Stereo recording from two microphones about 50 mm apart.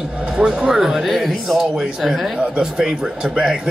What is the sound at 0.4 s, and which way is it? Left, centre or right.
A man's voice, centre.